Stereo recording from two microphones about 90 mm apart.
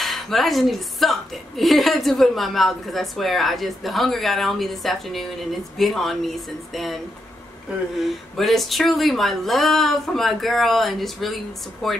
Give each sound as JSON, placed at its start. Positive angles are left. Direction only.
{"t": 0.0, "sound": "a woman's voice", "side_deg": 0}
{"t": 8.0, "sound": "a woman's voice", "side_deg": 0}